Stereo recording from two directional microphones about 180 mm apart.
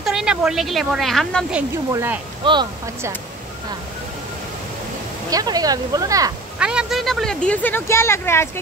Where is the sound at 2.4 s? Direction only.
25° right (ahead or behind).